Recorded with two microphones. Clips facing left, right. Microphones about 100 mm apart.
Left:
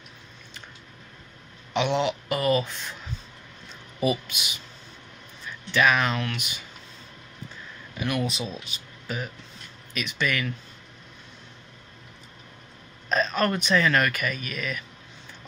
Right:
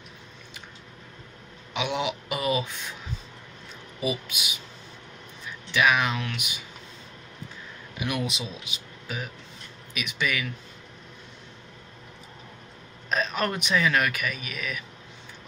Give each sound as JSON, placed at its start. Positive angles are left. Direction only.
{"t": 1.7, "sound": "speech", "side_deg": -5}
{"t": 4.3, "sound": "speech", "side_deg": -5}
{"t": 5.7, "sound": "speech", "side_deg": -10}
{"t": 8.0, "sound": "speech", "side_deg": -15}
{"t": 8.3, "sound": "speech", "side_deg": 40}
{"t": 8.6, "sound": "speech", "side_deg": -10}
{"t": 13.1, "sound": "speech", "side_deg": -15}